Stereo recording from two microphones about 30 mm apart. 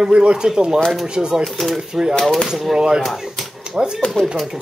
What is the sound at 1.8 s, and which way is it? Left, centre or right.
Speech, right.